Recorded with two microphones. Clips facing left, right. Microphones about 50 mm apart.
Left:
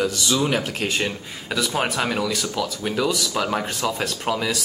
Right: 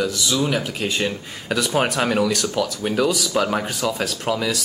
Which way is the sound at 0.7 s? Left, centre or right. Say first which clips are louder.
Even; left.